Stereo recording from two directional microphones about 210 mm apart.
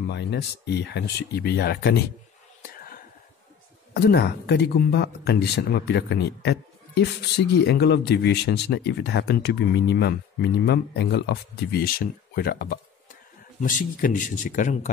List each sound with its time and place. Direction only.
0.1 s speech: 55° left (ahead or behind)
2.7 s whispering: 45° left (ahead or behind)
3.9 s speech: 50° left (ahead or behind)